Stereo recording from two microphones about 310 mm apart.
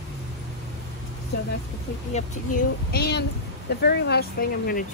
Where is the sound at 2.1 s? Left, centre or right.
Left.